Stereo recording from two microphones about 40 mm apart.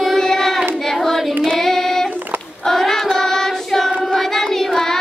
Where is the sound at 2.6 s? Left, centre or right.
Centre.